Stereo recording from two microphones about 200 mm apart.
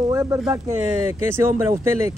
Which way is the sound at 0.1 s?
15° right (ahead or behind).